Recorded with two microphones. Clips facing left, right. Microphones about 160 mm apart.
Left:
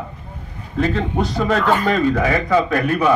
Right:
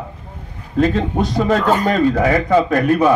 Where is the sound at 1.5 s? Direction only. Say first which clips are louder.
Right 1 dB; 40° right (ahead or behind).